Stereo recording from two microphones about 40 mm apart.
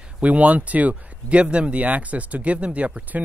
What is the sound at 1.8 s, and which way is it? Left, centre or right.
Speech, right.